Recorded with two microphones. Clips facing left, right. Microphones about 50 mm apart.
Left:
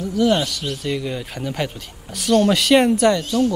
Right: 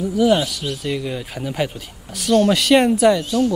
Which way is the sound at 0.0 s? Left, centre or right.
Centre.